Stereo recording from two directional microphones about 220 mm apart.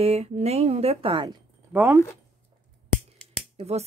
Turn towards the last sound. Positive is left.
turn(degrees=-30)  # may be behind; listen again after turning